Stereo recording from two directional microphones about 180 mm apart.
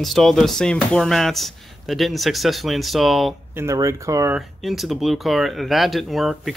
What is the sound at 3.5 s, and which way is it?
Speech, 15° right (ahead or behind).